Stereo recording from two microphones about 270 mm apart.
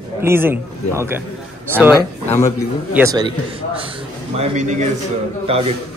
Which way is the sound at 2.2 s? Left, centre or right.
Centre.